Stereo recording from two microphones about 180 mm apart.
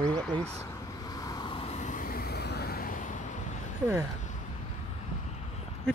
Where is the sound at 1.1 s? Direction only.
20° left (ahead or behind); by 3.0 s 55° left (ahead or behind).